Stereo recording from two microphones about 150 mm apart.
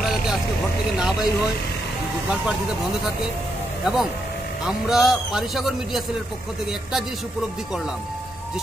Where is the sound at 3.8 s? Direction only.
5° right (ahead or behind).